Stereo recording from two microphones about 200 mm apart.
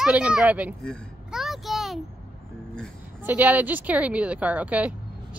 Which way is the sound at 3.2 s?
10° right (ahead or behind).